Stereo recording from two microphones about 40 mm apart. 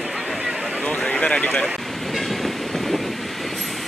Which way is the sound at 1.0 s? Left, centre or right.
Left.